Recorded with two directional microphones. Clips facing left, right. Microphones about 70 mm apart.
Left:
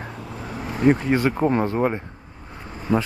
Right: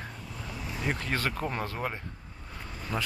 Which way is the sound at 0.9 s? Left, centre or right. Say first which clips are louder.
Left 8 dB; centre.